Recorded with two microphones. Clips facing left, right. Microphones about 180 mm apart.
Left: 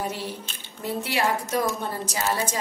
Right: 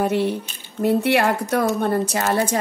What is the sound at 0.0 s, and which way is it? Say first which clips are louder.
A woman's voice: right 11 dB; 60° right (ahead or behind).